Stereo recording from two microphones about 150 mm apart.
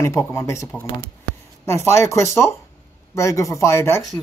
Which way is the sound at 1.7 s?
20° left (ahead or behind).